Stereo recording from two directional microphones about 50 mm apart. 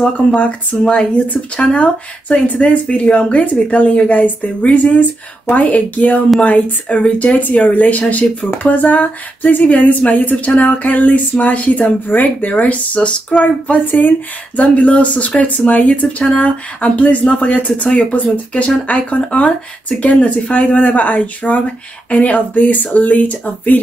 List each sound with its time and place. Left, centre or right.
0.3 s speech: left
13.8 s speech: left
14.6 s speech: left